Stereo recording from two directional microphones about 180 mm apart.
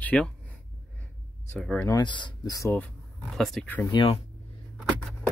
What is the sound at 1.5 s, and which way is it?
Speech, 5° left (ahead or behind).